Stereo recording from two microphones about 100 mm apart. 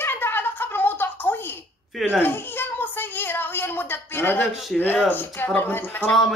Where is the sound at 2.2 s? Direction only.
20° left (ahead or behind).